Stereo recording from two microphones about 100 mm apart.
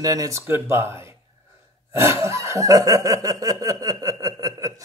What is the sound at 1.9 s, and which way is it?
Snicker, 30° right (ahead or behind).